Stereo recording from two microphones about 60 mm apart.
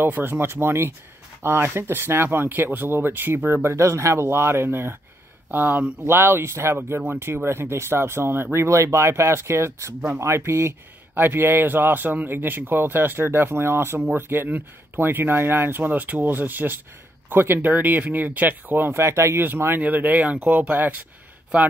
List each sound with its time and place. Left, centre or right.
0.0 s speech: right
3.7 s speech: right
5.5 s speech: right
6.0 s speech: right
19.8 s speech: right